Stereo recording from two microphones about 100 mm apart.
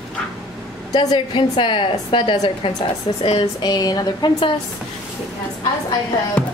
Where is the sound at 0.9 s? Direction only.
55° left (ahead or behind).